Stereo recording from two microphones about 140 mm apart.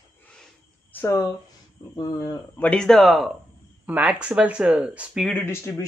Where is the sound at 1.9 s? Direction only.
25° left (ahead or behind).